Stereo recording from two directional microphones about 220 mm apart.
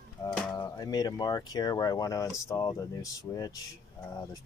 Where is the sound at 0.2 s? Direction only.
15° left (ahead or behind).